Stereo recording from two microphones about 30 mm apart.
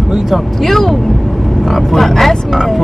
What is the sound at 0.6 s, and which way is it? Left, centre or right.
Speech, centre.